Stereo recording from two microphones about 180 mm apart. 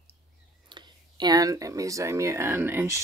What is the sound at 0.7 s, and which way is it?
Speech, 25° right (ahead or behind).